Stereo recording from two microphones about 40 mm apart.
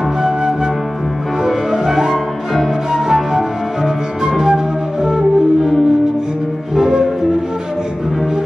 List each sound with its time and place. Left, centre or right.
1.4 s music: centre
2.9 s flute: centre
5.6 s music: centre
6.7 s music: centre